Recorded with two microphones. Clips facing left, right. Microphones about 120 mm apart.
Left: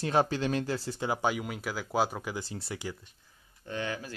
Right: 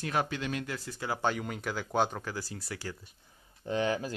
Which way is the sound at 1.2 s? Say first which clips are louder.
Left 1 dB; 5° left (ahead or behind).